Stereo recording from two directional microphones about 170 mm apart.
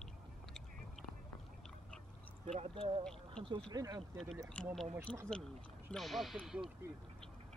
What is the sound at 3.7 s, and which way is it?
Speech, 20° right (ahead or behind).